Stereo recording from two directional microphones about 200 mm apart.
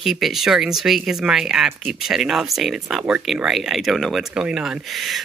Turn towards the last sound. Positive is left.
turn(degrees=0)  # may be behind; listen again after turning